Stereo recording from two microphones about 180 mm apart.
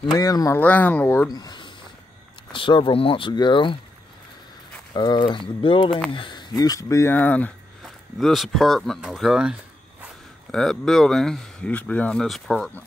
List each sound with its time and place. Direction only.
0.0 s speech: 20° left (ahead or behind)
4.9 s speech: 25° left (ahead or behind)
5.9 s speech: 5° left (ahead or behind)
6.1 s speech: 25° left (ahead or behind); by 12.8 s centre (ahead or behind)